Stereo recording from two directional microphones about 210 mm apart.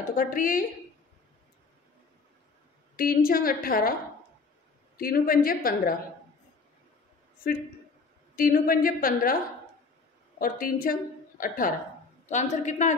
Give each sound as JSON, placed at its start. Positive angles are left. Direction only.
{"t": 0.1, "sound": "a woman's voice", "side_deg": 40}
{"t": 3.0, "sound": "a woman's voice", "side_deg": 45}
{"t": 4.9, "sound": "a woman's voice", "side_deg": 45}
{"t": 8.4, "sound": "a woman's voice", "side_deg": 40}
{"t": 10.4, "sound": "a woman's voice", "side_deg": 40}